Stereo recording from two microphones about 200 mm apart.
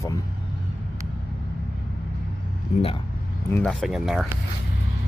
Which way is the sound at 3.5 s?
Centre (ahead or behind).